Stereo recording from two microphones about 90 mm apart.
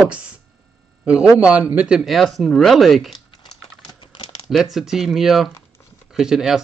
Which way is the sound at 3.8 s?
60° left (ahead or behind).